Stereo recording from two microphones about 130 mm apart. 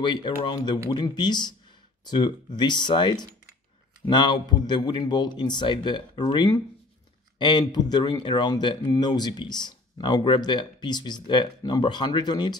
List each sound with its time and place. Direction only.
0.0 s speech: 35° left (ahead or behind)